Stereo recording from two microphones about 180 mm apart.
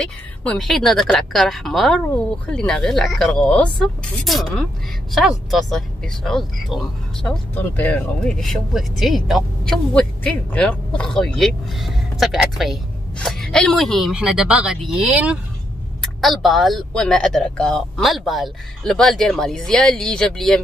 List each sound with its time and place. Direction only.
0.0 s a woman's voice: 5° left (ahead or behind)